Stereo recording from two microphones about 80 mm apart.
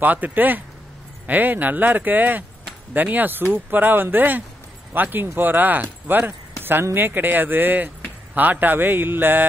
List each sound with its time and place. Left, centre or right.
0.0 s speech: right